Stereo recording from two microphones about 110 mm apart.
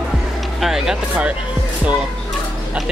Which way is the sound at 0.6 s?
5° right (ahead or behind).